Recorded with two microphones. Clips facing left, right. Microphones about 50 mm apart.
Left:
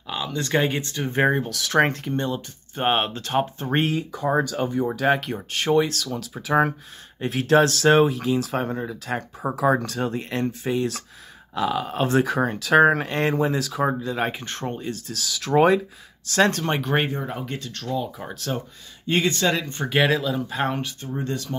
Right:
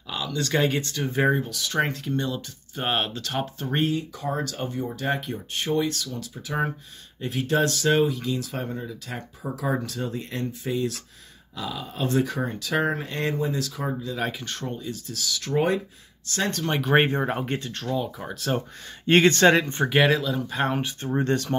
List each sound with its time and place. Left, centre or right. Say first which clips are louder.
0.1 s speech: left 2 dB; left
1.1 s speech: left 2 dB; left
1.5 s speech: left 5 dB; left
2.1 s speech: left 2 dB; left
4.8 s speech: left 6 dB; left
14.1 s speech: left 3 dB; left
14.8 s speech: left 3 dB; left
17.1 s speech: right 4 dB; right
17.7 s speech: left 2 dB; centre
18.2 s speech: right 1 dB; centre
19.0 s speech: right 5 dB; right
19.9 s speech: left 1 dB; centre
21.1 s speech: right 5 dB; right